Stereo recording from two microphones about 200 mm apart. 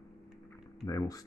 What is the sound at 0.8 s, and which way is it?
Speech, 15° left (ahead or behind).